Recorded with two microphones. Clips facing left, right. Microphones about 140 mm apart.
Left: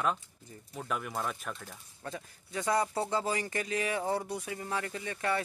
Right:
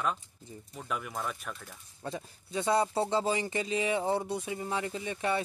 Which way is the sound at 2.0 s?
25° right (ahead or behind).